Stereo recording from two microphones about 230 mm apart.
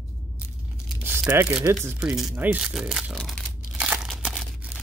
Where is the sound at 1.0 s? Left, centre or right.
Centre.